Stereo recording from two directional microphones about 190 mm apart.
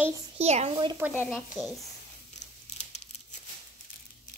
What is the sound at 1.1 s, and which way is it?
Speech, 5° left (ahead or behind).